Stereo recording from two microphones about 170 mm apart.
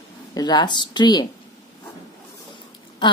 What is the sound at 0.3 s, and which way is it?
Speech, 25° left (ahead or behind).